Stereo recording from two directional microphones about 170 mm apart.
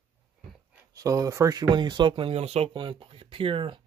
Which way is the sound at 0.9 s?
20° right (ahead or behind).